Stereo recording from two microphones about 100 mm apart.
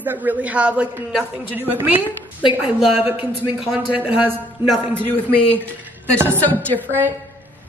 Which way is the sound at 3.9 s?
20° right (ahead or behind).